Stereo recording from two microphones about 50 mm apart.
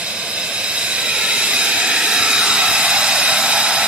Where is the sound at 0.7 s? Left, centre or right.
Right.